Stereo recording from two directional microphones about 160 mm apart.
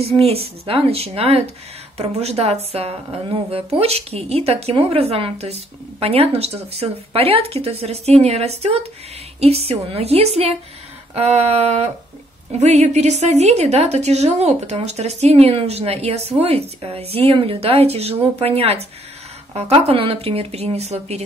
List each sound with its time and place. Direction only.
0.2 s a woman's voice: 40° right (ahead or behind)